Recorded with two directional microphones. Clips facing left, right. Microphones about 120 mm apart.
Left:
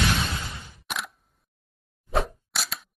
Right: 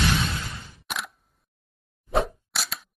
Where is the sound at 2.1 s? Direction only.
Centre (ahead or behind).